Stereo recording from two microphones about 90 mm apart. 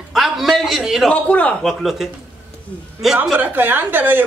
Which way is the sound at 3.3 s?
20° right (ahead or behind).